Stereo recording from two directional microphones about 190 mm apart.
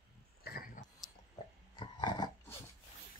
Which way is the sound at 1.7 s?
25° left (ahead or behind).